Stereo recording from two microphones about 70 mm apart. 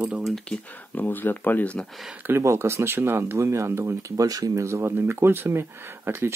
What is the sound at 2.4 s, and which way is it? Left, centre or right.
Speech, right.